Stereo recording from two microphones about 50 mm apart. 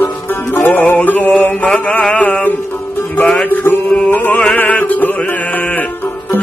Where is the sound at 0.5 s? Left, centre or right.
Left.